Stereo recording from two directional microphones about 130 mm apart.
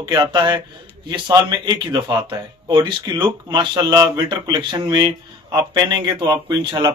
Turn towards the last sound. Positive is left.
turn(degrees=-35)  # may be behind; listen again after turning